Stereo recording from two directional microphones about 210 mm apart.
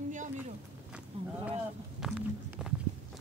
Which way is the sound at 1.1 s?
25° right (ahead or behind).